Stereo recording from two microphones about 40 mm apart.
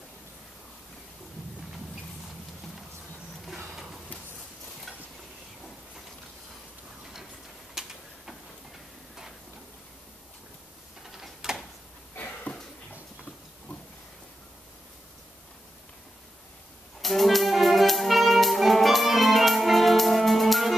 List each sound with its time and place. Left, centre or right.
7.8 s tick-tock: centre
11.1 s gears: centre
12.5 s a sound: left
17.0 s music: centre